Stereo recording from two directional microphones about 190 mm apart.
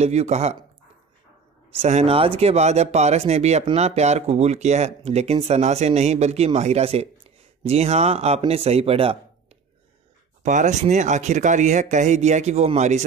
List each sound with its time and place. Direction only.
0.0 s speech: 35° right (ahead or behind)
1.8 s speech: 35° right (ahead or behind)
10.4 s speech: 40° right (ahead or behind)